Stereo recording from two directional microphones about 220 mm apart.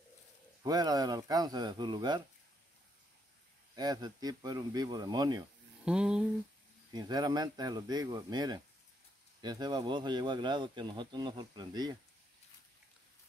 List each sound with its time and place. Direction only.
0.6 s speech: 15° right (ahead or behind)
3.7 s speech: 20° right (ahead or behind)
5.9 s speech: 5° right (ahead or behind)
6.9 s speech: 20° right (ahead or behind)